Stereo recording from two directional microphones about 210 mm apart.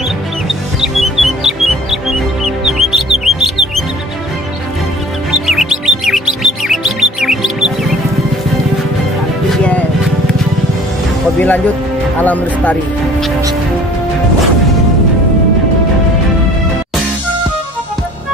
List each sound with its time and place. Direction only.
0.7 s music: centre (ahead or behind)
5.5 s chirp: centre (ahead or behind)
9.5 s music: 5° left (ahead or behind)
11.3 s speech: 10° left (ahead or behind)